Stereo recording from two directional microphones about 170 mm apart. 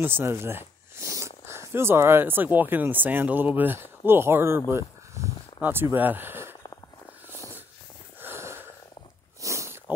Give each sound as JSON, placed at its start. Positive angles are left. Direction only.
{"t": 0.0, "sound": "speech", "side_deg": -15}
{"t": 8.2, "sound": "wheeze", "side_deg": -15}
{"t": 9.4, "sound": "a sound", "side_deg": -15}